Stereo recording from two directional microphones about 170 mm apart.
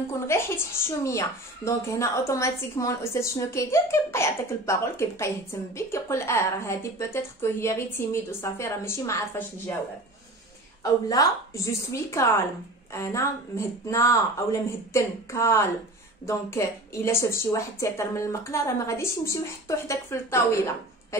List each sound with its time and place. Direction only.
0.3 s speech: 15° left (ahead or behind)
10.8 s speech: 20° left (ahead or behind)
21.1 s a sound: 15° left (ahead or behind)